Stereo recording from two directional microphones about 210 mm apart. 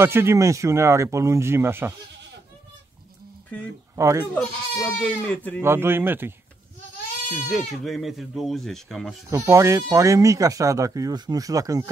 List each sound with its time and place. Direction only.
0.0 s speech: 10° right (ahead or behind)
3.9 s speech: 15° right (ahead or behind)
4.4 s speech: 10° left (ahead or behind)
5.6 s speech: 10° right (ahead or behind)
7.4 s speech: centre (ahead or behind)
9.3 s speech: 15° right (ahead or behind)